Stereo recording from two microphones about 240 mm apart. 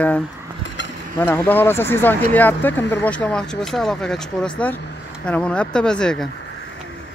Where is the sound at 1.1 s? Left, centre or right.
Centre.